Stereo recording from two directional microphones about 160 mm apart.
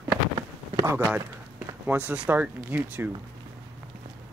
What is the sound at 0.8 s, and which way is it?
Speech, 15° right (ahead or behind).